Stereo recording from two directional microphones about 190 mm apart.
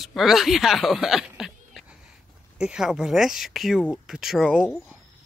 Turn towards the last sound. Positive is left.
turn(degrees=0)  # may be behind; listen again after turning